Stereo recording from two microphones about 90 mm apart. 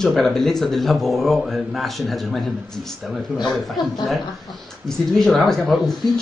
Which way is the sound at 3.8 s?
55° left (ahead or behind).